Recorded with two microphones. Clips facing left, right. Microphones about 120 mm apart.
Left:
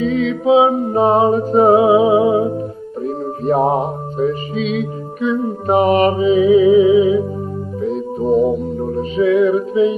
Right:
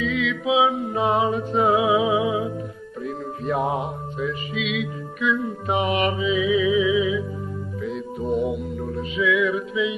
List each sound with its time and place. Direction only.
0.0 s mantra: 40° left (ahead or behind)
7.8 s music: 35° left (ahead or behind)